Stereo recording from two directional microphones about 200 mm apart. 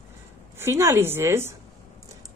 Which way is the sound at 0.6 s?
15° right (ahead or behind).